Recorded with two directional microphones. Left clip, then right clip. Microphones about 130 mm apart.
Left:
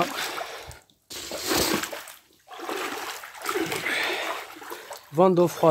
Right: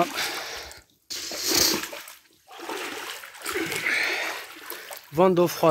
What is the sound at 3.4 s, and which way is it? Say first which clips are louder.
Splash: even; 20° left (ahead or behind).